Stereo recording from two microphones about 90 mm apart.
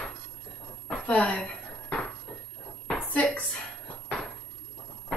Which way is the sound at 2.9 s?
15° left (ahead or behind).